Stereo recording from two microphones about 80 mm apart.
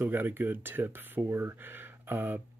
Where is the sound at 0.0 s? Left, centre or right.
Right.